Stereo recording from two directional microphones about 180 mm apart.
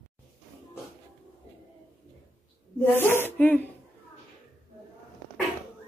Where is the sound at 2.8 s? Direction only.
10° left (ahead or behind).